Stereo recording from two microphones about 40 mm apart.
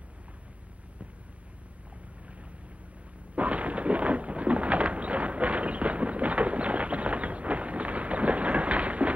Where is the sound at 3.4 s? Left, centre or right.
Right.